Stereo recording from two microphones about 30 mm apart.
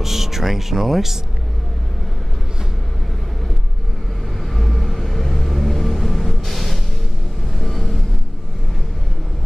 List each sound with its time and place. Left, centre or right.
0.0 s speech: centre
4.6 s vehicle: centre